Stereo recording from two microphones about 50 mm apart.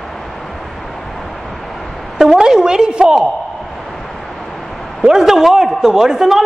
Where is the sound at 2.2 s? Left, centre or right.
Centre.